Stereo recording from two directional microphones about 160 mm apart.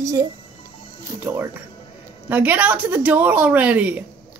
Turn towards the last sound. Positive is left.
turn(degrees=-10)  # may be behind; listen again after turning